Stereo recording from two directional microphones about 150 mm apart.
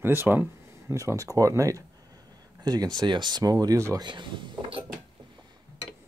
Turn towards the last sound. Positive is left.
turn(degrees=-35)  # may be behind; listen again after turning